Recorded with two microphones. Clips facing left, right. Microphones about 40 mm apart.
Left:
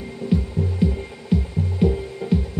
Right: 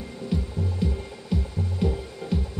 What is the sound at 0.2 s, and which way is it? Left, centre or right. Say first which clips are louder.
Music: left 6 dB; centre.